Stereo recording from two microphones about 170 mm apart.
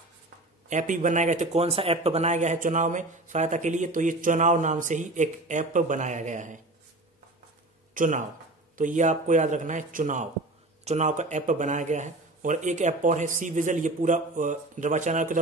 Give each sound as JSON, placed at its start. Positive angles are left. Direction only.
{"t": 0.7, "sound": "speech", "side_deg": -45}
{"t": 7.9, "sound": "speech", "side_deg": -50}